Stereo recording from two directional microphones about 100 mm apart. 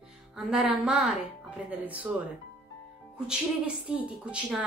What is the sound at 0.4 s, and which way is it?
Speech, 5° right (ahead or behind).